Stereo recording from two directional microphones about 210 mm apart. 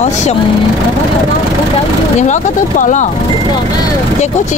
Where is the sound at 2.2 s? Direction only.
35° left (ahead or behind).